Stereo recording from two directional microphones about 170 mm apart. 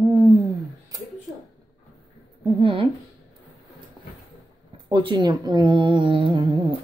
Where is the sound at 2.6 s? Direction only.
30° right (ahead or behind).